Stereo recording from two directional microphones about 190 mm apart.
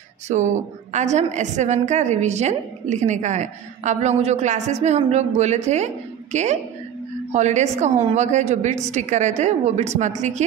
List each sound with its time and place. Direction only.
0.3 s a woman's voice: 35° right (ahead or behind)